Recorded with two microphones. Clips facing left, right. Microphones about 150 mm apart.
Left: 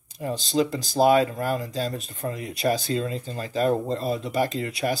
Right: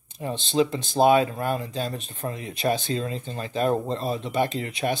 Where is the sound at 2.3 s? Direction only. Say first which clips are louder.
Left 2 dB; 30° right (ahead or behind).